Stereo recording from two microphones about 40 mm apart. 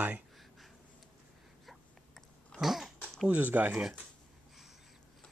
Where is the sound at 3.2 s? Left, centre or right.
Right.